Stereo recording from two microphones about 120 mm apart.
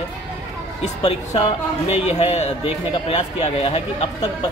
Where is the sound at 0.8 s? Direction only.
55° left (ahead or behind).